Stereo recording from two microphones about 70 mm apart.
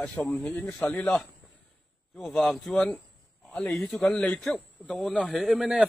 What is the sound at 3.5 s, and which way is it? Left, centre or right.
Speech, centre.